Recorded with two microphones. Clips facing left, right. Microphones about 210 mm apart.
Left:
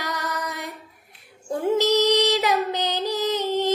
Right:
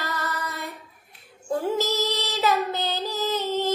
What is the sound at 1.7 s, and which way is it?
Child singing, 15° left (ahead or behind).